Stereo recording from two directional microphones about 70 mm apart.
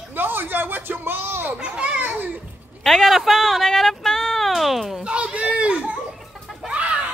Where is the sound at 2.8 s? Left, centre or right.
Centre.